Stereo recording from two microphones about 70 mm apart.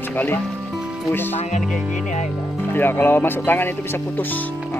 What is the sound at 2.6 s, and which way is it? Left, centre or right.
Speech, left.